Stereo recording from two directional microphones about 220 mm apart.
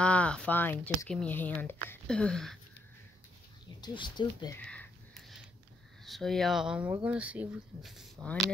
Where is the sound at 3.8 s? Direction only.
20° left (ahead or behind).